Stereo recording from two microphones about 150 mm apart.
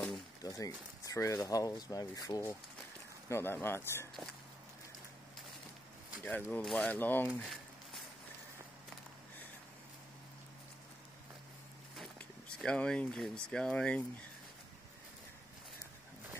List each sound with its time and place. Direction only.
0.4 s speech: 25° left (ahead or behind)
6.2 s speech: 10° left (ahead or behind)
7.4 s a sound: centre (ahead or behind)
12.0 s speech: 5° left (ahead or behind)